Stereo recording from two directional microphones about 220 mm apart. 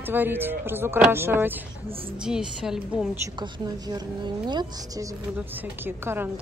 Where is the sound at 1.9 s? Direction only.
25° right (ahead or behind).